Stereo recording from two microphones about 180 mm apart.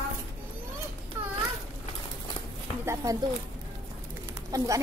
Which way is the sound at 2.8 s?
20° right (ahead or behind).